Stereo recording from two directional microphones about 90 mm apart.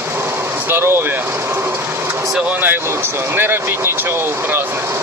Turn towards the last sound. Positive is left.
turn(degrees=-25)  # may be behind; listen again after turning